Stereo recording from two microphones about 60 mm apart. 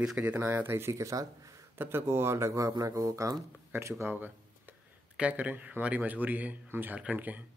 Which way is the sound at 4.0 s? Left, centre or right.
Right.